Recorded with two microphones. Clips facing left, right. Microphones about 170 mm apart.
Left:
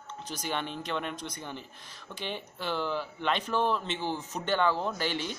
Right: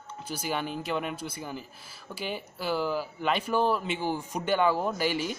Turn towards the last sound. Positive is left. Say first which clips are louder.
# right 4 dB
turn(degrees=-10)  # may be behind; listen again after turning